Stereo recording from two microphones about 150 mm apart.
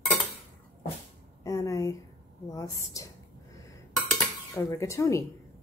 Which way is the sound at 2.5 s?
20° left (ahead or behind).